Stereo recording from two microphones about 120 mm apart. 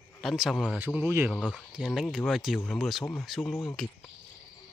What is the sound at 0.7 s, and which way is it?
Speech, 15° right (ahead or behind).